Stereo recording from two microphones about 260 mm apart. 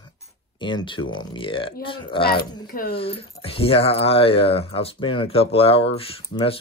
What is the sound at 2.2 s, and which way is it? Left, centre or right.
Speech, left.